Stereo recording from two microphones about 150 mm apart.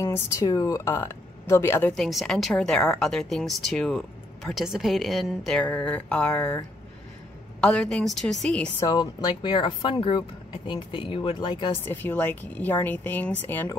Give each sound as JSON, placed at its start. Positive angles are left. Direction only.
{"t": 0.0, "sound": "speech", "side_deg": 20}
{"t": 2.0, "sound": "a woman's voice", "side_deg": 0}
{"t": 7.6, "sound": "a woman's voice", "side_deg": 5}
{"t": 8.7, "sound": "speech", "side_deg": 30}
{"t": 11.8, "sound": "speech", "side_deg": 15}